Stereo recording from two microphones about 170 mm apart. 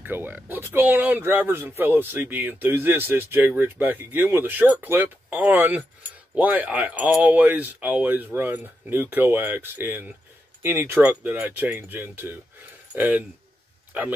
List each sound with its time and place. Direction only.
0.0 s speech: 10° right (ahead or behind)